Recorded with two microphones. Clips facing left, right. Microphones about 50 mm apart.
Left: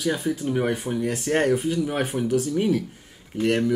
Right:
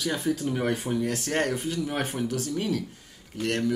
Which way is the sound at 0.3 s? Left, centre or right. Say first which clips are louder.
Left 2 dB; centre.